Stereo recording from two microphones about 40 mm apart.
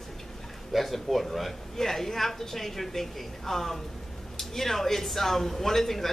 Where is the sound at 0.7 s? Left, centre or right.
Centre.